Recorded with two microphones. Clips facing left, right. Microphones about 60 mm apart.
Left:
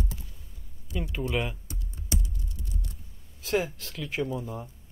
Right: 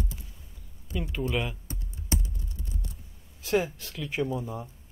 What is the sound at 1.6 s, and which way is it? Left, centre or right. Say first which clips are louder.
Typing: right 3 dB; right.